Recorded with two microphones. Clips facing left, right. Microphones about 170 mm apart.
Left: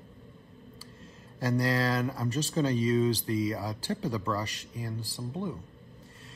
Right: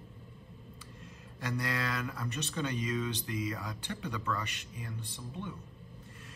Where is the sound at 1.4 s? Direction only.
35° left (ahead or behind).